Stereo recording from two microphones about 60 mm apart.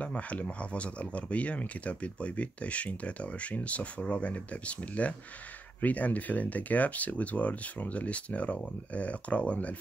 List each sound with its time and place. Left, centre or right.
0.0 s speech: left